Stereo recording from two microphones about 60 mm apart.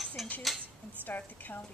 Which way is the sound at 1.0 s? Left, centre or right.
Left.